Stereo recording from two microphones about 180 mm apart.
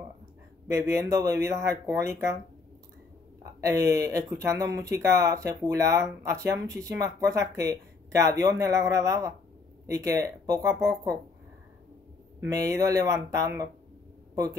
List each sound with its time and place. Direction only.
0.7 s speech: 15° right (ahead or behind)
3.6 s speech: 15° right (ahead or behind)
12.4 s a man's voice: 20° right (ahead or behind)